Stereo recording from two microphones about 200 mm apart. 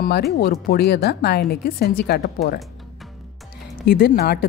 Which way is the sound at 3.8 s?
50° left (ahead or behind).